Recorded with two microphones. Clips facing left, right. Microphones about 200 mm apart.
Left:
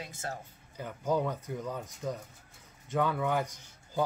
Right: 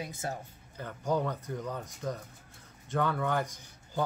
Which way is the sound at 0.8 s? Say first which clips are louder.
Left 1 dB; 5° left (ahead or behind).